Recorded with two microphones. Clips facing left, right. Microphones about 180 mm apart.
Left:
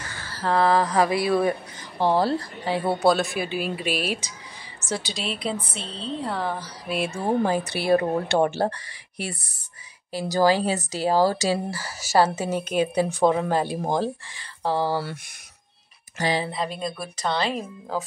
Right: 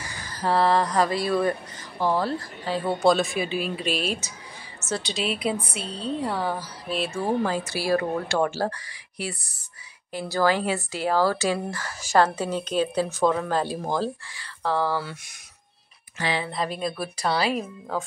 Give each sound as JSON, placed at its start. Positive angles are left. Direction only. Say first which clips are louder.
{"t": 0.0, "sound": "a sound", "louder": "right 1 dB", "side_deg": -15}
{"t": 0.6, "sound": "a woman's voice", "louder": "left 2 dB", "side_deg": 0}
{"t": 2.0, "sound": "speech", "louder": "left 3 dB", "side_deg": 30}
{"t": 2.6, "sound": "speech", "louder": "even", "side_deg": 10}
{"t": 4.7, "sound": "a sound", "louder": "even", "side_deg": 15}
{"t": 5.0, "sound": "a woman's voice", "louder": "right 3 dB", "side_deg": -5}
{"t": 6.9, "sound": "a woman's voice", "louder": "left 1 dB", "side_deg": 15}
{"t": 7.6, "sound": "a woman's voice", "louder": "left 1 dB", "side_deg": 60}
{"t": 7.9, "sound": "speech", "louder": "left 4 dB", "side_deg": 25}
{"t": 10.1, "sound": "speech", "louder": "left 3 dB", "side_deg": 40}
{"t": 11.7, "sound": "a woman's voice", "louder": "even", "side_deg": 5}
{"t": 16.2, "sound": "speech", "louder": "left 3 dB", "side_deg": 40}
{"t": 16.5, "sound": "speech", "louder": "right 1 dB", "side_deg": 0}